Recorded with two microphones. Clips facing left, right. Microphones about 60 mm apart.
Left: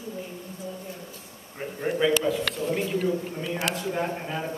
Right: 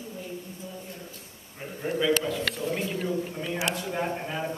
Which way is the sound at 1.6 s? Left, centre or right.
Centre.